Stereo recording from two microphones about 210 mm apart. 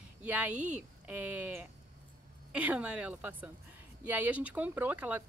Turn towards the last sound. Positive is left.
turn(degrees=-10)  # may be behind; listen again after turning